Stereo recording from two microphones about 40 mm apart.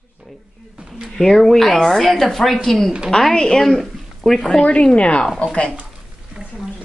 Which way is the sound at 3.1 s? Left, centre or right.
Centre.